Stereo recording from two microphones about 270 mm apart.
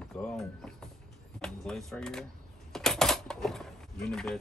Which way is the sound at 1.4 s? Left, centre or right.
Centre.